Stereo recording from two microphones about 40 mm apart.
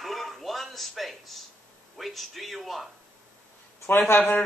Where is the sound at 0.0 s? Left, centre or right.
Centre.